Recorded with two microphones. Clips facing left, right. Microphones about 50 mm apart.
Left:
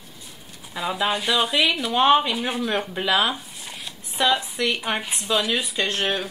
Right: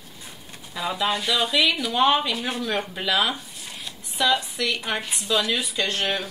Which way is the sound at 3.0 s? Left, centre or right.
Left.